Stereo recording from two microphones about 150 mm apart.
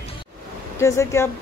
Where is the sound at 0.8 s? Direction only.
20° left (ahead or behind).